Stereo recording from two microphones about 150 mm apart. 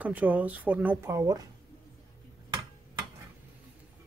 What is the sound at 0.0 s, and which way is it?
Speech, 10° right (ahead or behind).